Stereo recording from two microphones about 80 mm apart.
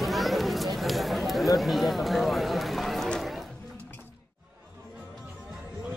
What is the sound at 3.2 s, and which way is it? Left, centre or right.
Chatter, centre.